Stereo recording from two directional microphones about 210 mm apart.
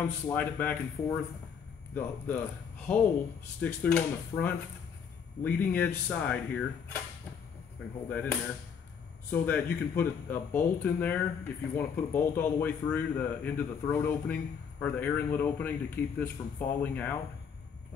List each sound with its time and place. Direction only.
0.0 s speech: 10° left (ahead or behind)
2.9 s speech: 10° left (ahead or behind)
8.1 s speech: 5° left (ahead or behind)